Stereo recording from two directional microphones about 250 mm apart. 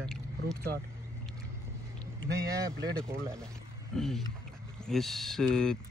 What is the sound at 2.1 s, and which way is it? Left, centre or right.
Speech, right.